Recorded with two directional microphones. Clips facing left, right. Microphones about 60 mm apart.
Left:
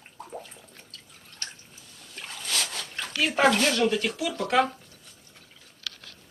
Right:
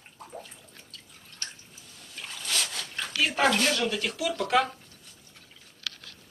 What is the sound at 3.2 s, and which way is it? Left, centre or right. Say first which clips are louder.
Speech: left 2 dB; left.